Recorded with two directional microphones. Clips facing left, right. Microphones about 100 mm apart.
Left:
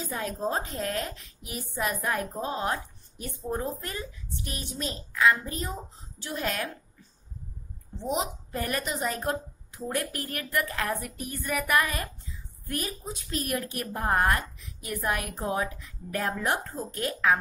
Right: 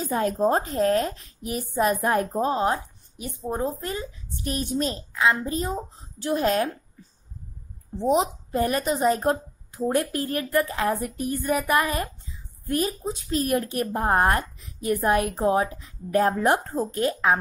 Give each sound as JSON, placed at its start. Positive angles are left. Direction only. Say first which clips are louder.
{"t": 0.0, "sound": "speech", "louder": "right 9 dB", "side_deg": -50}
{"t": 0.7, "sound": "speech", "louder": "right 10 dB", "side_deg": -30}
{"t": 3.2, "sound": "a woman's voice", "louder": "right 4 dB", "side_deg": -15}
{"t": 4.5, "sound": "speech", "louder": "right 10 dB", "side_deg": -40}
{"t": 5.1, "sound": "a woman's voice", "louder": "even", "side_deg": -25}
{"t": 8.0, "sound": "a woman's voice", "louder": "right 8 dB", "side_deg": -35}
{"t": 16.9, "sound": "a woman's voice", "louder": "right 2 dB", "side_deg": -30}